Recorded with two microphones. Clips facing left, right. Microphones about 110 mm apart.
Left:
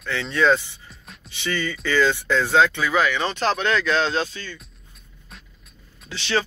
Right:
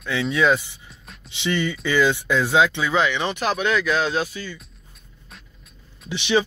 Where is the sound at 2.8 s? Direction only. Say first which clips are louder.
Even; 20° right (ahead or behind).